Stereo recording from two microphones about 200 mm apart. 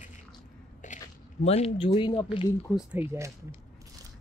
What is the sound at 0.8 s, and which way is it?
Biting, 40° left (ahead or behind).